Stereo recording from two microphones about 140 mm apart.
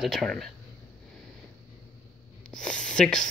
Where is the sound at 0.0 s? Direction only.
Centre (ahead or behind).